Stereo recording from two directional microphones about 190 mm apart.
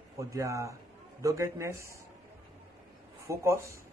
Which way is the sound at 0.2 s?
15° right (ahead or behind).